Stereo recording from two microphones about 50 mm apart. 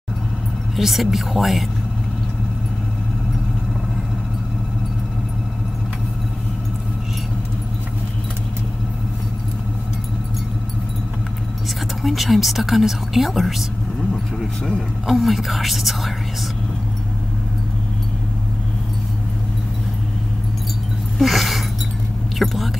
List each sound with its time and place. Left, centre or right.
0.7 s speech: centre
12.0 s speech: centre
15.0 s speech: centre
21.2 s a sound: centre
22.4 s speech: centre